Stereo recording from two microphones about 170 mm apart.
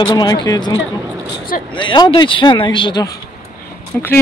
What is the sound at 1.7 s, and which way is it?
Speech, 30° left (ahead or behind).